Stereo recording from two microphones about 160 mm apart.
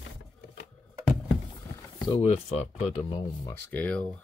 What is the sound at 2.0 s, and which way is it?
Speech, 35° left (ahead or behind).